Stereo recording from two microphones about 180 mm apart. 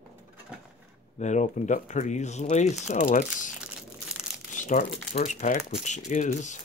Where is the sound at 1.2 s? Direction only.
40° left (ahead or behind).